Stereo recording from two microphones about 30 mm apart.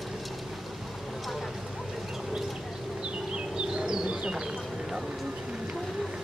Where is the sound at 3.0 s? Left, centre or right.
Right.